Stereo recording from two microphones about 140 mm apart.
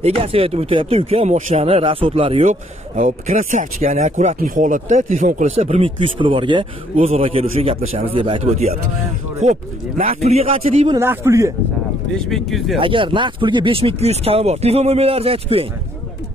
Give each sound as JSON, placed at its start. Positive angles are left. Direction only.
{"t": 0.0, "sound": "speech", "side_deg": -45}
{"t": 3.0, "sound": "speech", "side_deg": -60}
{"t": 4.4, "sound": "speech", "side_deg": -70}
{"t": 11.0, "sound": "a man's voice", "side_deg": -20}
{"t": 12.1, "sound": "speech", "side_deg": 5}
{"t": 12.7, "sound": "speech", "side_deg": -40}